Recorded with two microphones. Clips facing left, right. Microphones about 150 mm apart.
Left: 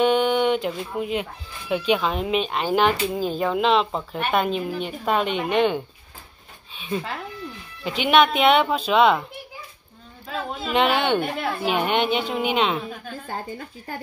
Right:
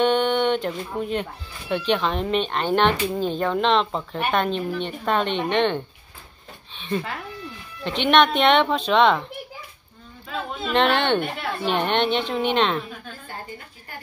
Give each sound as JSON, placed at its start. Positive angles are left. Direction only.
{"t": 0.0, "sound": "a woman's voice", "side_deg": 5}
{"t": 7.8, "sound": "speech", "side_deg": 5}
{"t": 10.6, "sound": "a woman's voice", "side_deg": 10}